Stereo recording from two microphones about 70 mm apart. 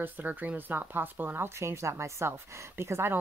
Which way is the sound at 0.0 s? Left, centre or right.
Right.